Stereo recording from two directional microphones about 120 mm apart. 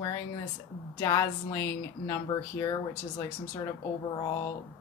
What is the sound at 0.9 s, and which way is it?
Speech, 25° left (ahead or behind).